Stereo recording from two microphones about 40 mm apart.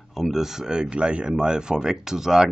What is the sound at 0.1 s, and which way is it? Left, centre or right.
Speech, centre.